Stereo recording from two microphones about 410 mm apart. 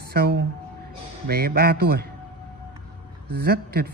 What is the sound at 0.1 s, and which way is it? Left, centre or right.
Speech, right.